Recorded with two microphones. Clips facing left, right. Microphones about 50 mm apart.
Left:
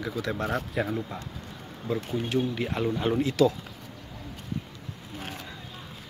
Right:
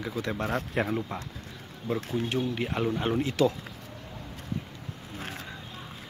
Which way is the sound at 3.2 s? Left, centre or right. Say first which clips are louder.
Left 3 dB; right.